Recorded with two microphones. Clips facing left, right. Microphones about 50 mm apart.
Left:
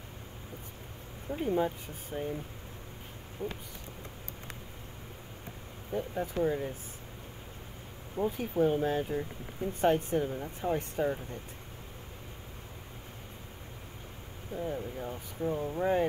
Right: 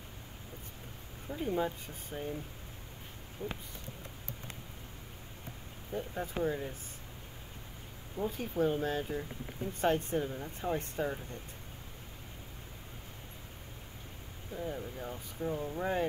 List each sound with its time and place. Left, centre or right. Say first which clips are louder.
1.4 s speech: left 3 dB; centre
3.4 s speech: left 3 dB; left
5.9 s speech: left 4 dB; centre
8.3 s speech: left 3 dB; centre
14.6 s speech: left 3 dB; centre
15.5 s speech: left 2 dB; centre
15.8 s speech: left 5 dB; centre